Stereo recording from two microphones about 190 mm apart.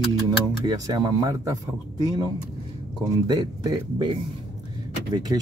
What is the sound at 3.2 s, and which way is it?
A man's voice, 20° right (ahead or behind).